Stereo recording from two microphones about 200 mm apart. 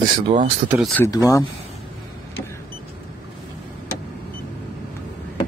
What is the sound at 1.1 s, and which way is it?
Speech, 15° left (ahead or behind).